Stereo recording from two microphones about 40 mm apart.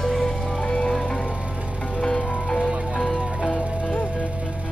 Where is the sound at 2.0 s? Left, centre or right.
Centre.